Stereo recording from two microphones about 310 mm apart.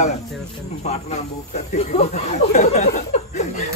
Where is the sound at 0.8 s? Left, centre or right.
Left.